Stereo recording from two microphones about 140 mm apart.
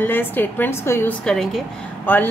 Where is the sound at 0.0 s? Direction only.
15° left (ahead or behind).